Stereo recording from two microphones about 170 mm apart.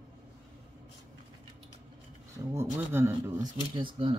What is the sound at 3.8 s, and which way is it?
Speech, 30° right (ahead or behind).